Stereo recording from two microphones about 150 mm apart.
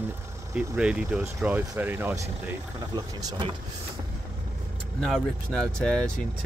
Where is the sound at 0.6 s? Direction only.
5° right (ahead or behind).